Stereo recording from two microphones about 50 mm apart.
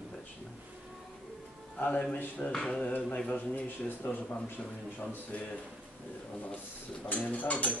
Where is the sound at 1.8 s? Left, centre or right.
Left.